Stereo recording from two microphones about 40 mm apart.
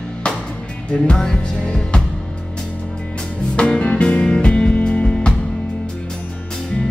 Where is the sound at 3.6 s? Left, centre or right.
Left.